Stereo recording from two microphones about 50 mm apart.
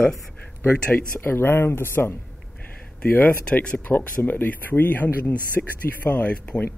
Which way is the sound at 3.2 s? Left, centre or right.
Left.